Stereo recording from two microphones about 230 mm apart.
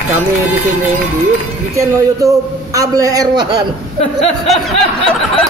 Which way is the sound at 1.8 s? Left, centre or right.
Centre.